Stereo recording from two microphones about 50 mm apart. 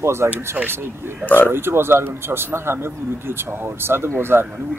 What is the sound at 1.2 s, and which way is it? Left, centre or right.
Speech, left.